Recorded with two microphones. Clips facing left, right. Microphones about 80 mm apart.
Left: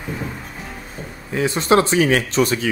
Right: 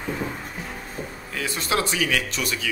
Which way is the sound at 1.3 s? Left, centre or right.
Left.